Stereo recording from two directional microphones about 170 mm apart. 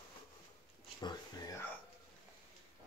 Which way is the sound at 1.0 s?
25° left (ahead or behind).